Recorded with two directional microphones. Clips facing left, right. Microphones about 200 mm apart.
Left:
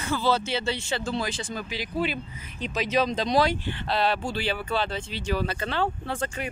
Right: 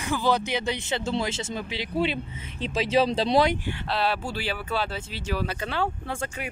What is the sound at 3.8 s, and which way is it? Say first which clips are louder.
Speech: left 2 dB; 5° right (ahead or behind).